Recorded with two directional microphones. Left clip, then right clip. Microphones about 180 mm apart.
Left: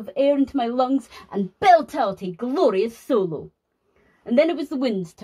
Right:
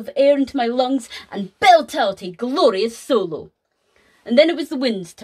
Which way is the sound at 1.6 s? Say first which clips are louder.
Right 3 dB; 55° right (ahead or behind).